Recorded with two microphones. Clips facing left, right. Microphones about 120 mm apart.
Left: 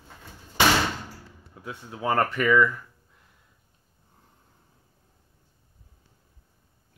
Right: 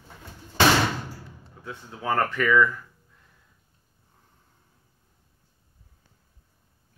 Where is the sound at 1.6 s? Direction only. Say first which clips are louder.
Left 2 dB; 15° left (ahead or behind).